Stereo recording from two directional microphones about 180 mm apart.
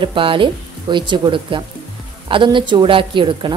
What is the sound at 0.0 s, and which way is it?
Speech, 30° right (ahead or behind).